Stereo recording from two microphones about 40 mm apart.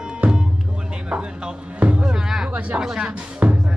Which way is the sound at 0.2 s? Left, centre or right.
Right.